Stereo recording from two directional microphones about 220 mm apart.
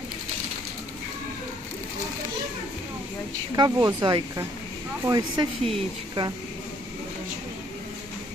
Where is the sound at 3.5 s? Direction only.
15° right (ahead or behind).